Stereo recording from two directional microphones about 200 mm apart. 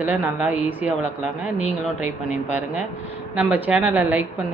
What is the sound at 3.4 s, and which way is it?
Speech, 10° right (ahead or behind).